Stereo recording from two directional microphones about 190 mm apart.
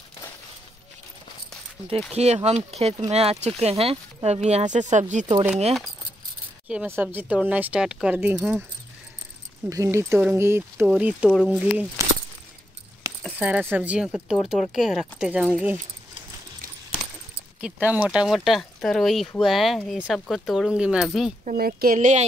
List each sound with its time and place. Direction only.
2.1 s speech: 35° right (ahead or behind)
6.7 s speech: 10° right (ahead or behind)
9.7 s speech: 15° right (ahead or behind)
13.2 s speech: 5° right (ahead or behind)
17.6 s speech: 5° right (ahead or behind)
21.5 s speech: 50° right (ahead or behind)